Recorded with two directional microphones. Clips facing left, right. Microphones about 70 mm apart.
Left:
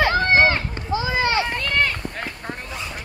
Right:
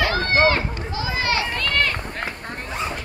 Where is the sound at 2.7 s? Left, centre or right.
Right.